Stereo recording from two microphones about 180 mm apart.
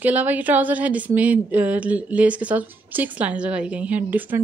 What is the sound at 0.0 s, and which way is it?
A woman's voice, 10° right (ahead or behind).